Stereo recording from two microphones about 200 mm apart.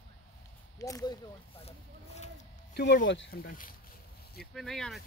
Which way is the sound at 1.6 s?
35° left (ahead or behind).